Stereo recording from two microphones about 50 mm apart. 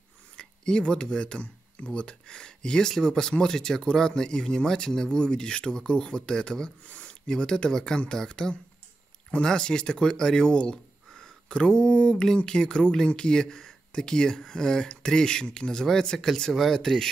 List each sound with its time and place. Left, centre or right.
0.4 s speech: centre